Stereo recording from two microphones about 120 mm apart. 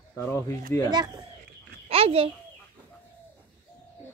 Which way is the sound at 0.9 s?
40° right (ahead or behind).